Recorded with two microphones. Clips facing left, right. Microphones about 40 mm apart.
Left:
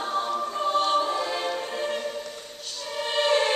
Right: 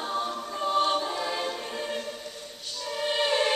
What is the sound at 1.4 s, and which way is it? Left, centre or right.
Music, centre.